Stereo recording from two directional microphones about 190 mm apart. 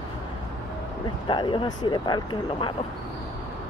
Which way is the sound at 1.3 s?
25° left (ahead or behind).